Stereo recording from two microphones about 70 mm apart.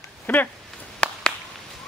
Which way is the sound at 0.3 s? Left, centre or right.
Left.